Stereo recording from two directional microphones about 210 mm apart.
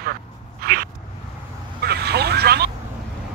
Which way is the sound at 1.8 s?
50° right (ahead or behind).